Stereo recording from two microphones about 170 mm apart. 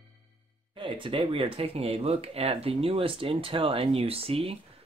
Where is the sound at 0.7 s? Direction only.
30° right (ahead or behind).